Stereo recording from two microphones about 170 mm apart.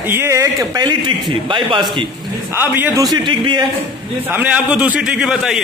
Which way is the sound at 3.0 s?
25° right (ahead or behind).